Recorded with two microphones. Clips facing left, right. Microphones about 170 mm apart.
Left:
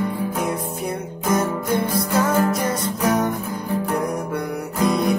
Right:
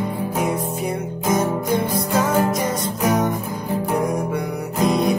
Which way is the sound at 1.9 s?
15° right (ahead or behind).